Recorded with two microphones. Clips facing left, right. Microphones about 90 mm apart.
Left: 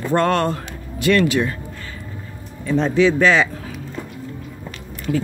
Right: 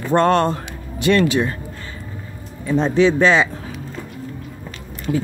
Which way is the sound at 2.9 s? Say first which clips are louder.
Right 1 dB; 30° right (ahead or behind).